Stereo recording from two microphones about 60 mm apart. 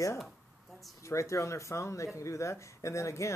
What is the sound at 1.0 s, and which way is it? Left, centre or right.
Speech, left.